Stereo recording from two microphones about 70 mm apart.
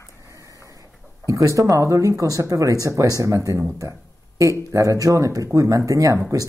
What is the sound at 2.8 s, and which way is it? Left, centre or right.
Speech, right.